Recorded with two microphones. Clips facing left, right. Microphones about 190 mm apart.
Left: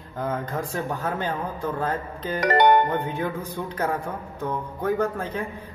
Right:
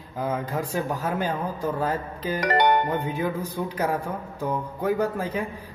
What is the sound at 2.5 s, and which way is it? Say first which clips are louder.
Speech: left 3 dB; 50° left (ahead or behind).